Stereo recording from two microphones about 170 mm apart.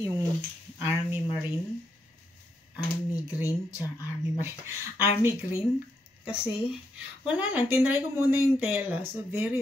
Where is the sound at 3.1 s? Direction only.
20° left (ahead or behind).